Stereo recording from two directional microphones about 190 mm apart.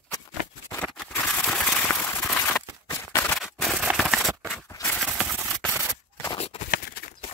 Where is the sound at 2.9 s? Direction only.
10° left (ahead or behind).